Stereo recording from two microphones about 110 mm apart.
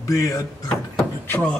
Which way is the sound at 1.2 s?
15° left (ahead or behind).